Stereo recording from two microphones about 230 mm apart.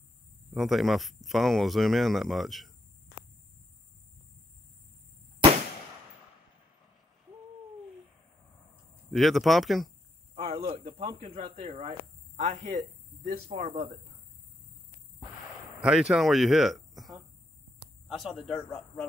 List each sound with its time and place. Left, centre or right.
0.5 s speech: centre
9.1 s speech: centre
10.3 s speech: right
15.8 s speech: centre